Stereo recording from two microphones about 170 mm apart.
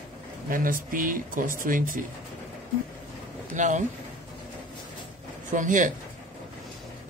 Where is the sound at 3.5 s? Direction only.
45° right (ahead or behind).